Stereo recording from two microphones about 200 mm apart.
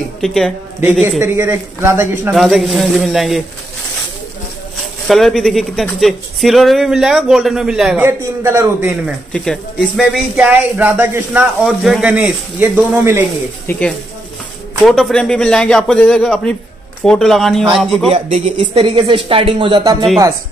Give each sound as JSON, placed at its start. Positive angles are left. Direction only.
{"t": 0.2, "sound": "speech", "side_deg": 0}
{"t": 1.2, "sound": "speech", "side_deg": -10}
{"t": 2.3, "sound": "speech", "side_deg": 0}
{"t": 5.0, "sound": "speech", "side_deg": 0}
{"t": 9.3, "sound": "speech", "side_deg": 5}
{"t": 13.7, "sound": "speech", "side_deg": 5}
{"t": 18.1, "sound": "speech", "side_deg": -30}